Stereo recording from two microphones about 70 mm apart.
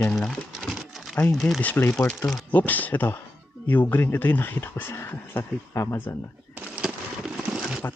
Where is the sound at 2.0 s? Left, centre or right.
Centre.